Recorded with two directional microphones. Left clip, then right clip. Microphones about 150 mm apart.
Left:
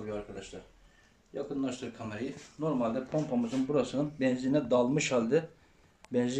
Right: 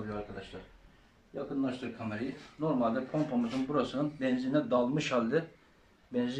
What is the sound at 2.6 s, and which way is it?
Speech, 10° left (ahead or behind).